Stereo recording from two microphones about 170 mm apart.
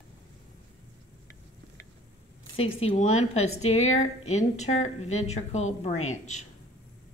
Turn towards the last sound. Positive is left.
turn(degrees=45)  # may be behind; listen again after turning